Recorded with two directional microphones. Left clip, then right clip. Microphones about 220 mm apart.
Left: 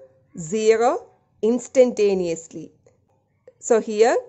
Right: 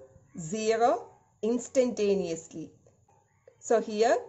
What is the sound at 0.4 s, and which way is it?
A woman's voice, 50° left (ahead or behind).